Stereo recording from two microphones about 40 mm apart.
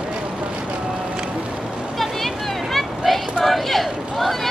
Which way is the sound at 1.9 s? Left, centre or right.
Centre.